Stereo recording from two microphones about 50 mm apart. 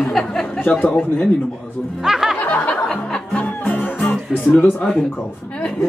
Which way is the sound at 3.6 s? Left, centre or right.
Left.